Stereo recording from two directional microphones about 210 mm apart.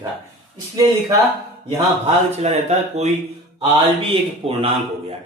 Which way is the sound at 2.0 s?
30° right (ahead or behind).